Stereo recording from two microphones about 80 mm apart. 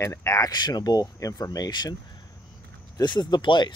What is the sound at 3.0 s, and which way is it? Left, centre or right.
Speech, left.